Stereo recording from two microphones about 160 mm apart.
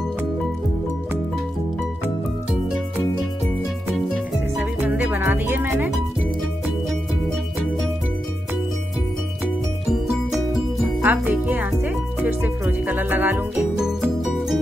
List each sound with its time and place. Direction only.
4.8 s music: 10° right (ahead or behind)
11.0 s music: 10° right (ahead or behind)